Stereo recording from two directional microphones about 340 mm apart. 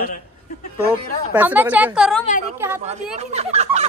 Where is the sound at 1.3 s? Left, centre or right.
Centre.